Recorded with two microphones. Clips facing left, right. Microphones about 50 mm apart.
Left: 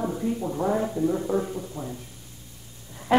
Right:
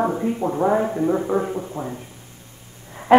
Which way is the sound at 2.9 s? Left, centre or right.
Right.